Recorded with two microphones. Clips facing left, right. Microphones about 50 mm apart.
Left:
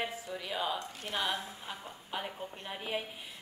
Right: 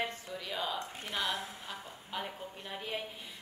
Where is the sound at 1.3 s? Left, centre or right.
Centre.